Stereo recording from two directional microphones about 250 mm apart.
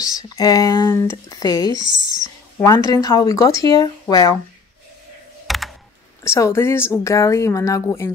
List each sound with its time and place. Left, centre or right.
0.0 s speech: centre
2.2 s a sound: centre
2.9 s speech: centre
5.5 s computer keyboard: centre
6.2 s speech: centre